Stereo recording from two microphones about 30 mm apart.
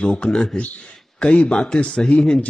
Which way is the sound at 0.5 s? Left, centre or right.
Left.